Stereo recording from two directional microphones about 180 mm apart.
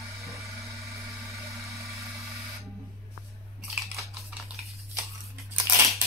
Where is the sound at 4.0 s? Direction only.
Centre (ahead or behind).